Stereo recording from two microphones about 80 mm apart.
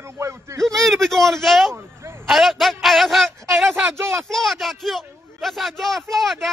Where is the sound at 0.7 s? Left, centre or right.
Centre.